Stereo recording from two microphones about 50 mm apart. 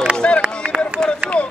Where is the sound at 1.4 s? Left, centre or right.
Left.